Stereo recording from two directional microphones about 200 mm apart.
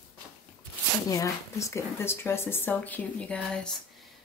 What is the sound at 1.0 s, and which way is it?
Speech, 15° left (ahead or behind).